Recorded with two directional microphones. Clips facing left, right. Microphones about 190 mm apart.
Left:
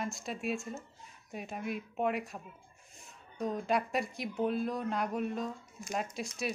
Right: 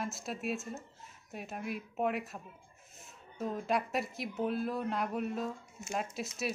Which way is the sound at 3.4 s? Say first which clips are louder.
Left 1 dB; centre (ahead or behind).